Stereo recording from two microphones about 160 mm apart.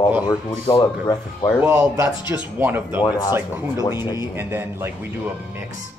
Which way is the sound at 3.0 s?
25° left (ahead or behind).